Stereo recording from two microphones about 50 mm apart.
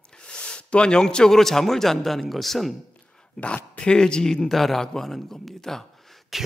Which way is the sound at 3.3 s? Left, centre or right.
Left.